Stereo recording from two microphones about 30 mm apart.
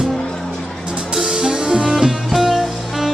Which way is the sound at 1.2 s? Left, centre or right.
Right.